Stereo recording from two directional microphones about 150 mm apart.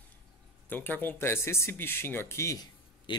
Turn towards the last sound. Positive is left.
turn(degrees=30)  # may be behind; listen again after turning